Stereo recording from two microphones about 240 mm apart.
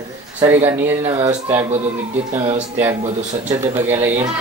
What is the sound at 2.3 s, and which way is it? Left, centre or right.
Speech, right.